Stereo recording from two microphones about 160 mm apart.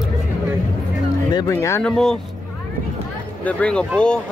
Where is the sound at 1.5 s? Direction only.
15° left (ahead or behind).